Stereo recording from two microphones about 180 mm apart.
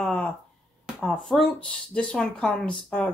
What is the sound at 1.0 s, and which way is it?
Speech, 5° left (ahead or behind).